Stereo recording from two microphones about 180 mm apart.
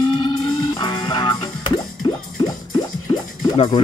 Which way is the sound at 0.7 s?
25° left (ahead or behind).